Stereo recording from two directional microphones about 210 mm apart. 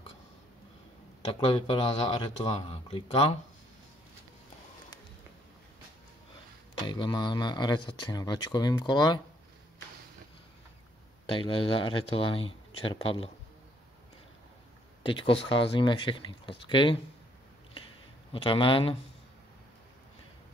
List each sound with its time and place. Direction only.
1.3 s speech: 25° left (ahead or behind)
6.9 s speech: 20° left (ahead or behind)
11.2 s speech: 25° left (ahead or behind)
15.0 s speech: 25° left (ahead or behind)
18.3 s speech: 25° left (ahead or behind)